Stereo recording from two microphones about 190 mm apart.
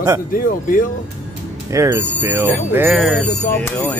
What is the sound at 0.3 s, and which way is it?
Speech, 45° left (ahead or behind).